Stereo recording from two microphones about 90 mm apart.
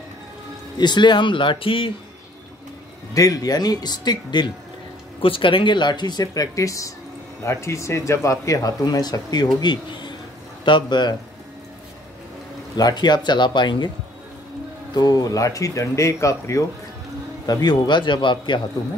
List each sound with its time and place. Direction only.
0.7 s speech: 55° left (ahead or behind); by 2.0 s 80° left
3.2 s speech: 45° left (ahead or behind)
5.2 s speech: 80° left; by 11.1 s 55° left (ahead or behind)
12.7 s speech: 50° left (ahead or behind)
15.0 s speech: 45° left (ahead or behind)
17.5 s speech: 50° left (ahead or behind)